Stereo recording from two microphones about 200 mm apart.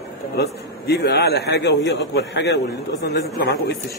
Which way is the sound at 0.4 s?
55° left (ahead or behind).